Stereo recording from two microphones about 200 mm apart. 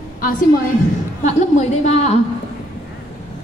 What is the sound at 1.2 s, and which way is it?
A woman's voice, 35° left (ahead or behind).